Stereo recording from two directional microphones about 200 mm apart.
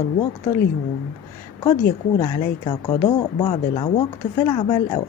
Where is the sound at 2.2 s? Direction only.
20° left (ahead or behind).